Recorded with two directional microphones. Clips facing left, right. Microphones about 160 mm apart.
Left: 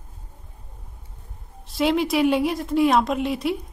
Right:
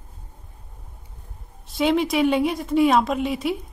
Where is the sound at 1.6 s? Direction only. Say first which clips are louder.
Right 1 dB; centre (ahead or behind).